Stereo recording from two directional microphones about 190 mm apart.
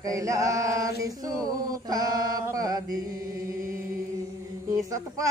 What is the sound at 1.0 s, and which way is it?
Male singing, 20° right (ahead or behind).